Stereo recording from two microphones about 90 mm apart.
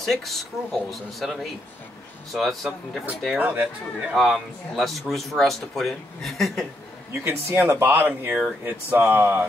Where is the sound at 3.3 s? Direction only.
15° right (ahead or behind).